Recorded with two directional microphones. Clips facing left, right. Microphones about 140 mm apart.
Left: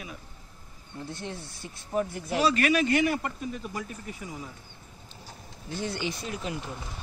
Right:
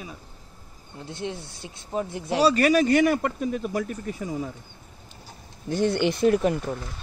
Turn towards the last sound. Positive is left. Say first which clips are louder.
# right 13 dB
turn(degrees=-55)  # may be behind; listen again after turning